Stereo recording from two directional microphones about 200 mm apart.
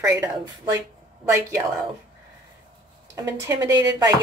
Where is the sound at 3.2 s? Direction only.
15° right (ahead or behind).